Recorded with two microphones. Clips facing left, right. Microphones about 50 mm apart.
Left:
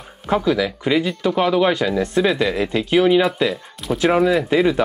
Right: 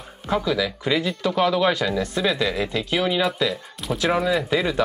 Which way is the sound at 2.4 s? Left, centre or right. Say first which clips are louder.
Left 4 dB; centre.